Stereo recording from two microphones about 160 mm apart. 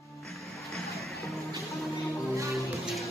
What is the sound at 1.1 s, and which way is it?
Music, 20° left (ahead or behind).